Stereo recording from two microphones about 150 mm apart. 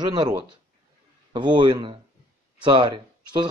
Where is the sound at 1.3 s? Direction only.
30° right (ahead or behind).